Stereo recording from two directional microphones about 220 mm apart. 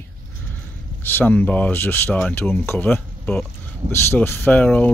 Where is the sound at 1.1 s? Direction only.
10° left (ahead or behind).